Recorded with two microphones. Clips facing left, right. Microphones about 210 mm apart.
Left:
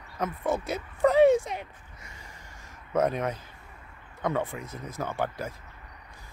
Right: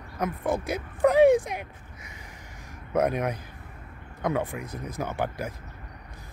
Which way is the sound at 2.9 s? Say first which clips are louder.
Right 1 dB; 10° right (ahead or behind).